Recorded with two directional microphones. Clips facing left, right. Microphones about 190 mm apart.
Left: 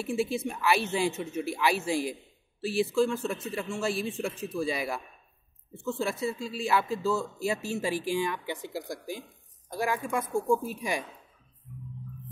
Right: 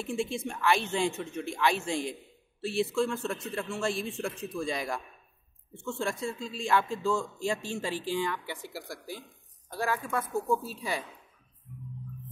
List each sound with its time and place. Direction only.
0.0 s a man's voice: 5° left (ahead or behind)